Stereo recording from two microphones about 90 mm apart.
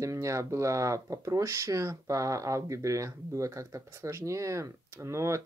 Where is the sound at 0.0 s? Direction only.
35° right (ahead or behind).